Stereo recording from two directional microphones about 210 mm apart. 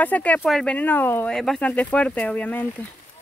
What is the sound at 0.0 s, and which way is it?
Speech, 5° left (ahead or behind).